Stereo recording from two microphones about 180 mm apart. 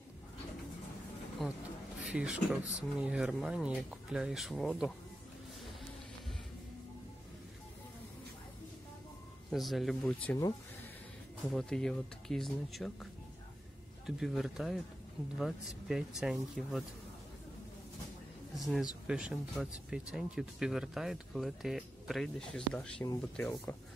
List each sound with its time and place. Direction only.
1.4 s speech: centre (ahead or behind)
9.5 s speech: centre (ahead or behind)
11.4 s speech: 5° left (ahead or behind)
18.5 s speech: centre (ahead or behind)
23.5 s speech: 20° left (ahead or behind)